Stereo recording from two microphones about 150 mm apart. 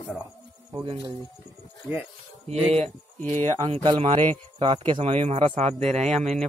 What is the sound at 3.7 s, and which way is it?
Speech, 35° right (ahead or behind).